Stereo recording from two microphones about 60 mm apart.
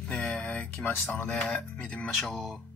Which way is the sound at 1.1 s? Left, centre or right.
Centre.